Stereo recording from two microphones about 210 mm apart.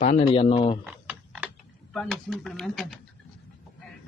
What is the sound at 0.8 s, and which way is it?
Typing, 5° right (ahead or behind).